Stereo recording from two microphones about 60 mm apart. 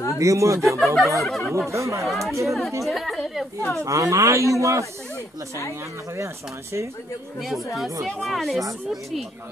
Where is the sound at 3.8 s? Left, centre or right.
Right.